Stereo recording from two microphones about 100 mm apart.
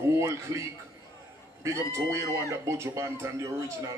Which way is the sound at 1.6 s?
30° right (ahead or behind).